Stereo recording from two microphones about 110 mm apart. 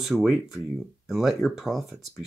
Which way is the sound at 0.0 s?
5° right (ahead or behind).